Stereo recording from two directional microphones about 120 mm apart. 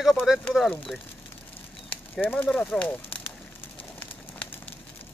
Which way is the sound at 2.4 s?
10° left (ahead or behind).